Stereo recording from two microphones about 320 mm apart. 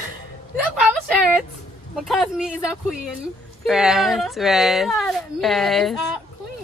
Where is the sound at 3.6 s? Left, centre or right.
Centre.